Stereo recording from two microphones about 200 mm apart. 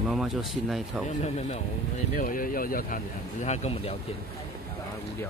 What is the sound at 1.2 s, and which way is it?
Speech, 35° left (ahead or behind).